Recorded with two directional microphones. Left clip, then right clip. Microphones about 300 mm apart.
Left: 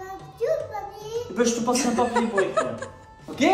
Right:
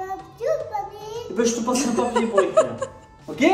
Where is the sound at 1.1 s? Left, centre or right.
Centre.